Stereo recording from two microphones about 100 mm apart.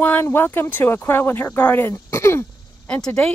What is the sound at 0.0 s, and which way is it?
Speech, 20° left (ahead or behind).